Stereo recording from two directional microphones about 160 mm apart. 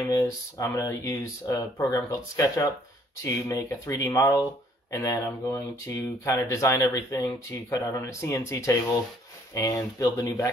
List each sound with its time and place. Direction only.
0.0 s speech: 20° left (ahead or behind)